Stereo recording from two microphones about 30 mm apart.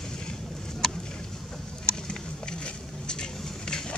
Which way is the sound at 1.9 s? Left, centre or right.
Left.